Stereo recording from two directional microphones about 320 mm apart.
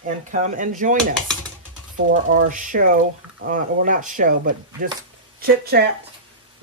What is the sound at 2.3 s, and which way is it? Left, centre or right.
Speech, right.